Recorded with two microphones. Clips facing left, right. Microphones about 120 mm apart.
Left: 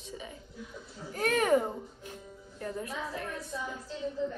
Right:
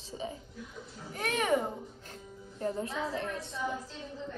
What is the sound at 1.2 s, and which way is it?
Speech, 40° left (ahead or behind).